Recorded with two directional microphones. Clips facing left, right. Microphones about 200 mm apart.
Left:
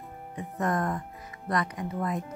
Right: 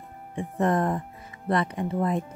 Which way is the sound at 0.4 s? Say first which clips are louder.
Right 5 dB; 30° right (ahead or behind).